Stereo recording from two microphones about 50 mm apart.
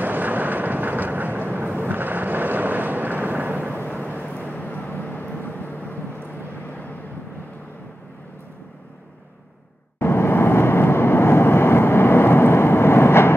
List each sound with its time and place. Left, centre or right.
0.0 s vehicle: right
4.0 s vehicle: left
9.9 s vehicle: left